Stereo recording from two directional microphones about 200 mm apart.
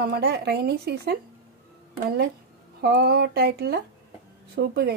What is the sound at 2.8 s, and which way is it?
Speech, 55° right (ahead or behind).